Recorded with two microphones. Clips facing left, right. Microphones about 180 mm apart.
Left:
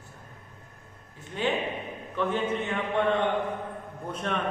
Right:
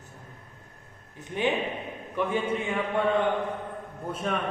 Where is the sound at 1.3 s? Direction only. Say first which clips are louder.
Right 1 dB; 15° right (ahead or behind).